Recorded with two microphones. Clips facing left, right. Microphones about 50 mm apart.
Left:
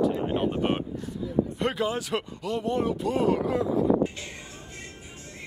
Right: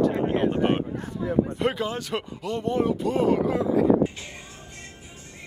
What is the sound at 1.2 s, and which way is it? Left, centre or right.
Speech, right.